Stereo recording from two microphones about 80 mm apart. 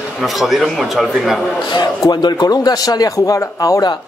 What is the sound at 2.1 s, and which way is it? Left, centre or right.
A man's voice, left.